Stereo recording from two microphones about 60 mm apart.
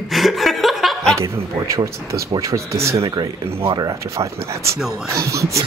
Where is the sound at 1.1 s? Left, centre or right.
Right.